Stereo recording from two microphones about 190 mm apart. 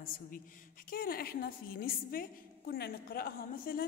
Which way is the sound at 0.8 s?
50° left (ahead or behind).